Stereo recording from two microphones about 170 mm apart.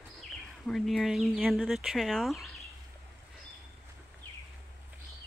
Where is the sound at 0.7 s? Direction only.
Centre (ahead or behind).